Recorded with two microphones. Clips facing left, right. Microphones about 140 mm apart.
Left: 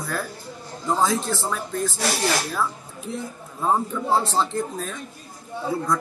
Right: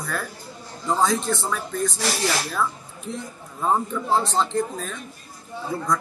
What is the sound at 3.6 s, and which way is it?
Speech, 5° left (ahead or behind).